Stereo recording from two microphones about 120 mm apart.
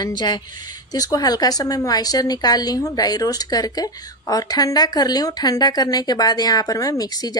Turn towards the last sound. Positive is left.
turn(degrees=30)  # may be behind; listen again after turning